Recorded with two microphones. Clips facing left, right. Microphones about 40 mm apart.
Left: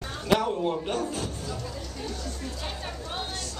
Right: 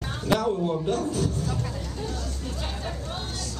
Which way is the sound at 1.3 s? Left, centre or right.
Right.